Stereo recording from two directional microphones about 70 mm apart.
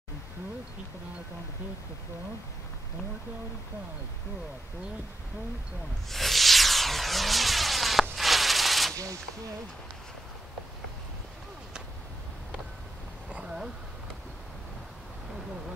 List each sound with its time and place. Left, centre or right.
6.0 s music: centre
8.9 s speech: right
13.3 s a sound: centre